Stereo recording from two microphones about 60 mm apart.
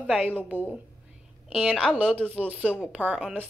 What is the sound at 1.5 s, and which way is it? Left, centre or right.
A woman's voice, centre.